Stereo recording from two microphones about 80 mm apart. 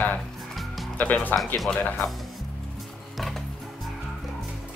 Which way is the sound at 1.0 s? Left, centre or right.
Left.